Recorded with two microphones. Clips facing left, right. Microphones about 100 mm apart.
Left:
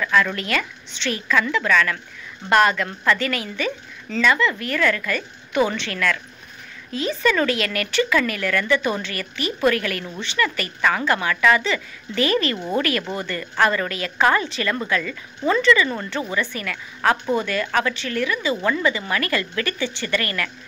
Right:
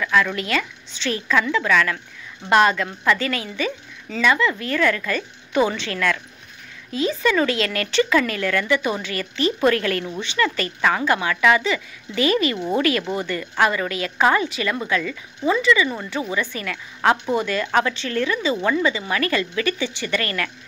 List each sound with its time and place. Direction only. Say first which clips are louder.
0.0 s a woman's voice: even; 10° right (ahead or behind); by 10.0 s 30° right (ahead or behind)
10.0 s a woman's voice: right 1 dB; 15° right (ahead or behind)
15.5 s a woman's voice: left 1 dB; 10° right (ahead or behind)
20.2 s speech: right 1 dB; 30° right (ahead or behind)